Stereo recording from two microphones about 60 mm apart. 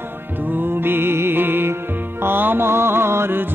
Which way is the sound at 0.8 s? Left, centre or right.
Right.